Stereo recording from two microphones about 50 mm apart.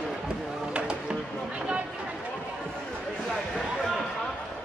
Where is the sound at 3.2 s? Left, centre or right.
Centre.